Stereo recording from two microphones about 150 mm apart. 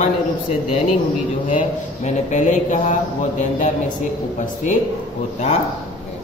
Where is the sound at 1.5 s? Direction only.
55° left (ahead or behind).